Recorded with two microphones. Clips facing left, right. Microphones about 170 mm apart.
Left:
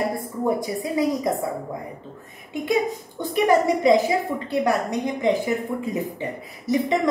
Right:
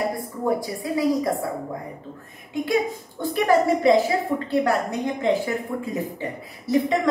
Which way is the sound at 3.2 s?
20° left (ahead or behind).